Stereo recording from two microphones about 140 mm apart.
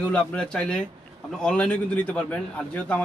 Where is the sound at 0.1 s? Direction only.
5° left (ahead or behind).